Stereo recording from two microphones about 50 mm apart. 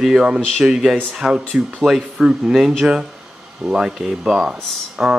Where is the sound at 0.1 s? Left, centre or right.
Centre.